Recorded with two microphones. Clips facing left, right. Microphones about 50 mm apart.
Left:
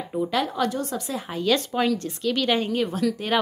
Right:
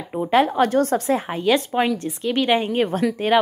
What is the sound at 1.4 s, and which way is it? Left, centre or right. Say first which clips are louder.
A woman's voice: even; right.